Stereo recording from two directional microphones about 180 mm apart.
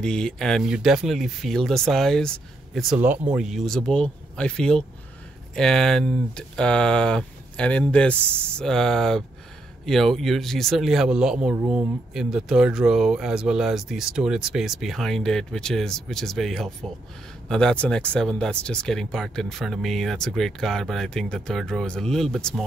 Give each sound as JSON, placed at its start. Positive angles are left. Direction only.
{"t": 0.0, "sound": "speech", "side_deg": 5}